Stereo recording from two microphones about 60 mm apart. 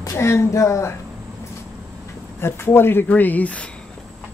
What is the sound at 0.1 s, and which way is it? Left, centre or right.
Speech, left.